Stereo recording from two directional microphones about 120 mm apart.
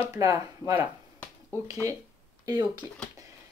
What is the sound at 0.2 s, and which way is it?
Speech, 25° right (ahead or behind).